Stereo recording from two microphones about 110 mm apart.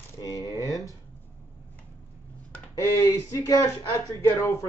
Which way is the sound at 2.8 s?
25° left (ahead or behind).